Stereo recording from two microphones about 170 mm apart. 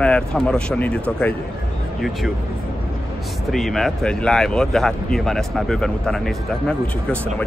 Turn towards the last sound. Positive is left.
turn(degrees=5)  # may be behind; listen again after turning